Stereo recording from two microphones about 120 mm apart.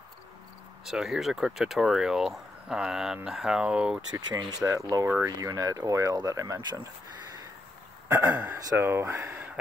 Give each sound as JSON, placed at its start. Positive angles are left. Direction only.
{"t": 0.8, "sound": "speech", "side_deg": -5}
{"t": 4.6, "sound": "speech", "side_deg": -30}
{"t": 8.1, "sound": "a man's voice", "side_deg": -15}